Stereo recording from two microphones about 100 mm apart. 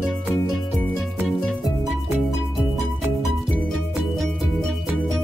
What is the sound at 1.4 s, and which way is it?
Music, centre (ahead or behind).